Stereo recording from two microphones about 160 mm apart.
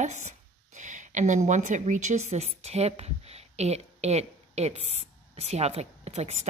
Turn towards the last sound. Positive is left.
turn(degrees=-45)  # may be behind; listen again after turning